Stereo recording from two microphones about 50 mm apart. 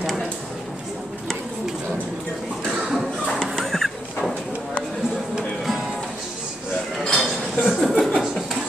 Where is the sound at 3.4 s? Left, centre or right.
Centre.